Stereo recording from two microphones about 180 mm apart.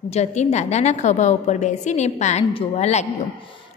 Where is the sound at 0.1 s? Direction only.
40° left (ahead or behind).